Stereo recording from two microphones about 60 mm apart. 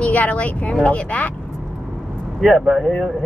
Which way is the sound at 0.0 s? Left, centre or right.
Left.